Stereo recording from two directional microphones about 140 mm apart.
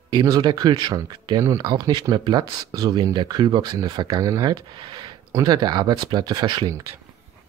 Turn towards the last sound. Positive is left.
turn(degrees=-30)  # may be behind; listen again after turning